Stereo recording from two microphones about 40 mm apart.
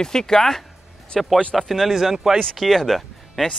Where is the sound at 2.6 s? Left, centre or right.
Centre.